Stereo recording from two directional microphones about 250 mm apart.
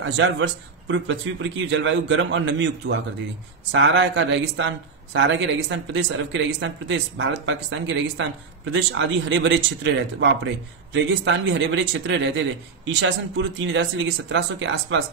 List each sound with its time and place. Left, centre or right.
0.0 s speech: right
3.7 s speech: right